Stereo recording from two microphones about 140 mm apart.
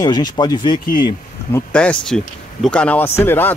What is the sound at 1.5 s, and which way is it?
Speech, 10° left (ahead or behind).